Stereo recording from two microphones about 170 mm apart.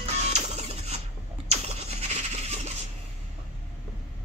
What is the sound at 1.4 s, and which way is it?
Scratch, 40° right (ahead or behind).